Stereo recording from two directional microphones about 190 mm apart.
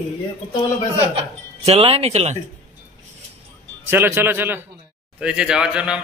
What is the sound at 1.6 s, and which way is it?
Speech, 35° right (ahead or behind).